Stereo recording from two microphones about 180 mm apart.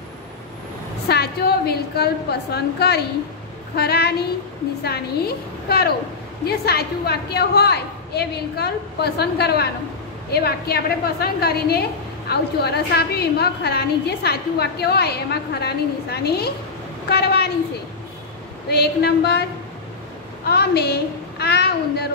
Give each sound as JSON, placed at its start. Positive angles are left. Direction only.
{"t": 1.0, "sound": "a woman's voice", "side_deg": 60}
{"t": 18.7, "sound": "a woman's voice", "side_deg": 65}
{"t": 20.4, "sound": "a woman's voice", "side_deg": 60}